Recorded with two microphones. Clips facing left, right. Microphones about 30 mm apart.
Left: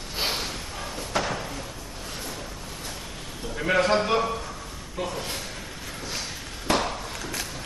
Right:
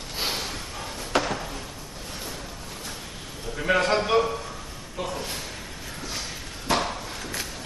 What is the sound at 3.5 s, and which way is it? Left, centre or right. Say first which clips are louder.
Speech: even; centre.